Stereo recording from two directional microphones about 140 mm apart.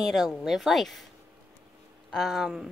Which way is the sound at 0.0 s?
Centre (ahead or behind).